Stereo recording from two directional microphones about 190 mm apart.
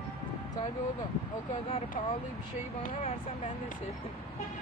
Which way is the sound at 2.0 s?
35° left (ahead or behind).